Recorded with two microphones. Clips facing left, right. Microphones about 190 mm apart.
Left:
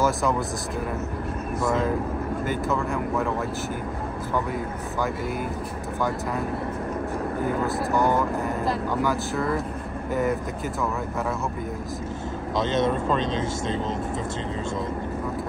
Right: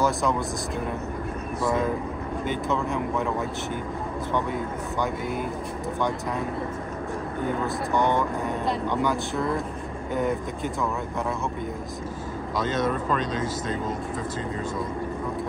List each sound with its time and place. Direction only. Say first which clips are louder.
0.0 s speech: left 1 dB; centre (ahead or behind)
2.4 s speech: right 1 dB; 5° left (ahead or behind)
7.9 s speech: even; 5° left (ahead or behind)
12.5 s speech: left 2 dB; 25° left (ahead or behind)